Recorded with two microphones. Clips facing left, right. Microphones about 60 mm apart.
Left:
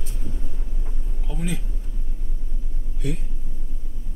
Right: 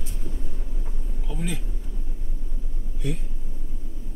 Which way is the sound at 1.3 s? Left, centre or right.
Centre.